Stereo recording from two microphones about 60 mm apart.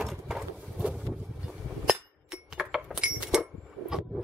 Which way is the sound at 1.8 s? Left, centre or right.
Centre.